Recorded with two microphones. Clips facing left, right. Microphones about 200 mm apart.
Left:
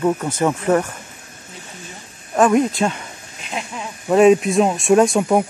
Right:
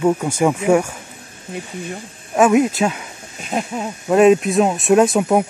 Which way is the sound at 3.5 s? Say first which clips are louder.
Right 6 dB; 45° right (ahead or behind).